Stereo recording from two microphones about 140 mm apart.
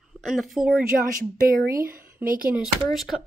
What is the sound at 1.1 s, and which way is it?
Speech, 85° right.